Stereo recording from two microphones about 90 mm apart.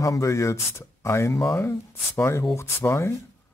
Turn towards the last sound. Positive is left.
turn(degrees=30)  # may be behind; listen again after turning